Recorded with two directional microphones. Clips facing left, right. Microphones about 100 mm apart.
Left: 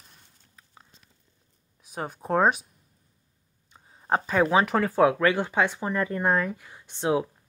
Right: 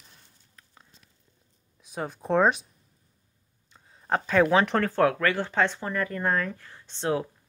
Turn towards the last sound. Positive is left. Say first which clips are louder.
# left 2 dB
turn(degrees=15)  # may be behind; listen again after turning